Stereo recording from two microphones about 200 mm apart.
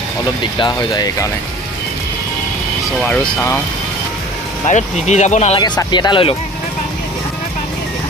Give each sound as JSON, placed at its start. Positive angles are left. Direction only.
{"t": 0.6, "sound": "speech", "side_deg": 20}
{"t": 3.0, "sound": "speech", "side_deg": 5}
{"t": 4.6, "sound": "speech", "side_deg": 35}
{"t": 5.6, "sound": "speech", "side_deg": 20}